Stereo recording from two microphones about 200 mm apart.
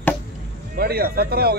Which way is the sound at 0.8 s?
50° right (ahead or behind).